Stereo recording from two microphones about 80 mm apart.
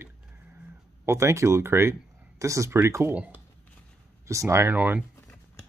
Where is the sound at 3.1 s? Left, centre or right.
Centre.